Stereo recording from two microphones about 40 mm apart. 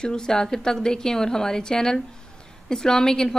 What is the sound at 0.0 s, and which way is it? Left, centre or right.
A woman's voice, centre.